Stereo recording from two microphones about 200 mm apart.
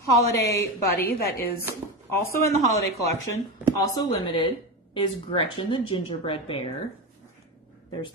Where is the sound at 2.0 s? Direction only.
10° left (ahead or behind).